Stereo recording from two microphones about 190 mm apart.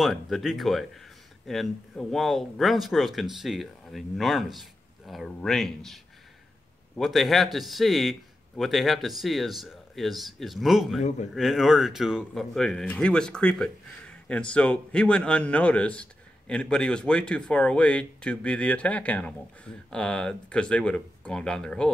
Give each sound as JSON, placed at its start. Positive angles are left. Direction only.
{"t": 0.0, "sound": "speech", "side_deg": 0}
{"t": 7.0, "sound": "speech", "side_deg": 0}
{"t": 11.0, "sound": "a man's voice", "side_deg": 35}
{"t": 11.3, "sound": "speech", "side_deg": 0}